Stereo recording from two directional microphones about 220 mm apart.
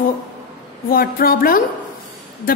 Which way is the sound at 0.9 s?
40° left (ahead or behind).